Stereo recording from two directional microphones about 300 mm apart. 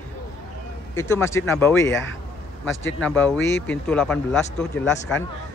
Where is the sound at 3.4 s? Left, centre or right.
Left.